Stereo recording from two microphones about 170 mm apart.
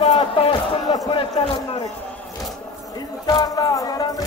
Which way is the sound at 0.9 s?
25° left (ahead or behind).